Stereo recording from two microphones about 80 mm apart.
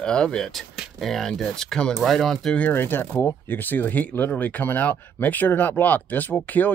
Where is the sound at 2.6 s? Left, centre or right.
Left.